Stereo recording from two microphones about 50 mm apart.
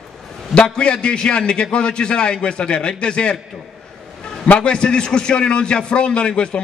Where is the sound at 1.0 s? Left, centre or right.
Centre.